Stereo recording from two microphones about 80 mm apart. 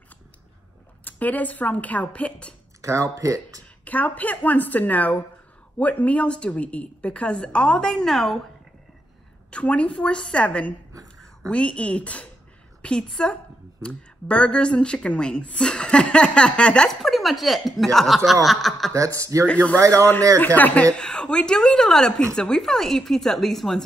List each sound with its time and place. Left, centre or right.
1.0 s speech: left
2.8 s speech: right
3.8 s speech: centre
9.5 s speech: centre
18.9 s speech: right
19.4 s speech: centre
19.8 s speech: right
20.3 s speech: left; by 23.8 s centre